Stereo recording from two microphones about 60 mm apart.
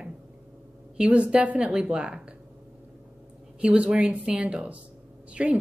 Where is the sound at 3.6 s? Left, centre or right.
Centre.